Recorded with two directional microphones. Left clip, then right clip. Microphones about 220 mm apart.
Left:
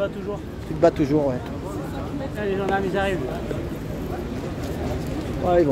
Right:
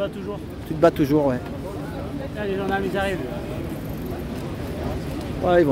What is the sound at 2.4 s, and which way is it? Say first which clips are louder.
Speech: left 1 dB; centre (ahead or behind).